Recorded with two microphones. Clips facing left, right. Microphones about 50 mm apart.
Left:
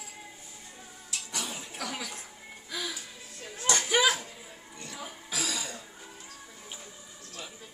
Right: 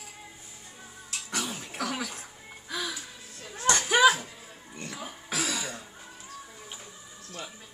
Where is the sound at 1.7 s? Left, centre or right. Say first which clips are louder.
Right 5 dB; right.